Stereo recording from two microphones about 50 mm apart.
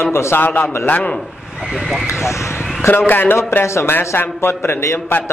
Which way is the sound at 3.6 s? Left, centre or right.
Left.